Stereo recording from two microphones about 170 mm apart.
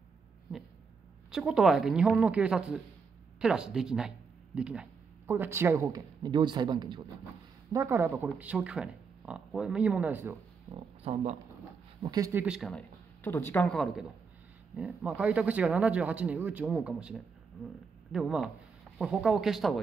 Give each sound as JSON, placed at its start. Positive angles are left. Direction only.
{"t": 0.5, "sound": "a woman's voice", "side_deg": -5}
{"t": 10.7, "sound": "speech", "side_deg": -35}
{"t": 12.0, "sound": "speech", "side_deg": -20}
{"t": 12.7, "sound": "a woman's voice", "side_deg": 10}